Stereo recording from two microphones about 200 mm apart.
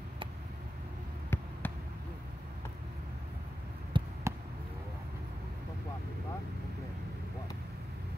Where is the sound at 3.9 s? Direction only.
25° right (ahead or behind).